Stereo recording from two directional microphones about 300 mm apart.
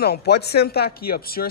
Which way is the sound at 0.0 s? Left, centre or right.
Left.